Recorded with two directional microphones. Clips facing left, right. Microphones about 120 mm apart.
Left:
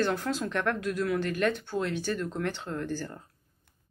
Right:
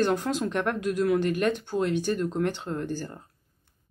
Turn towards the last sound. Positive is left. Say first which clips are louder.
# right 2 dB
turn(degrees=-15)  # may be behind; listen again after turning